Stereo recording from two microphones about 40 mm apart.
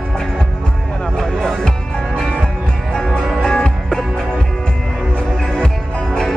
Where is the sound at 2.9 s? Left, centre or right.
Centre.